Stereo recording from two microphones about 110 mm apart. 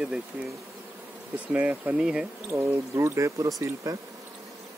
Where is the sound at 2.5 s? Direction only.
25° right (ahead or behind).